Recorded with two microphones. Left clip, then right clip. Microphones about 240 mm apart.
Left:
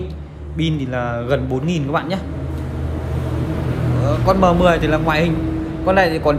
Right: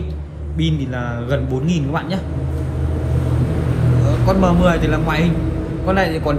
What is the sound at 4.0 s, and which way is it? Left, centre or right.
A man's voice, left.